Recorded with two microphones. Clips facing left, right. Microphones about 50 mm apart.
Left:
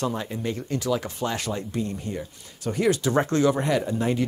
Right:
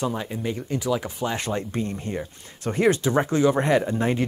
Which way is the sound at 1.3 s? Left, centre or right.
Right.